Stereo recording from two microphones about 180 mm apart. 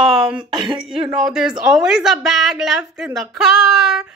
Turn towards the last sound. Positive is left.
turn(degrees=0)  # may be behind; listen again after turning